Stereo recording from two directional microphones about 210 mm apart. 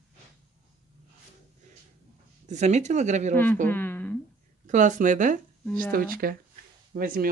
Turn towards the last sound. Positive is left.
turn(degrees=-40)  # may be behind; listen again after turning